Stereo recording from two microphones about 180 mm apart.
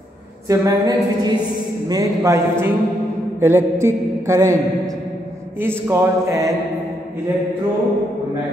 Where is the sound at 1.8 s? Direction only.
20° right (ahead or behind).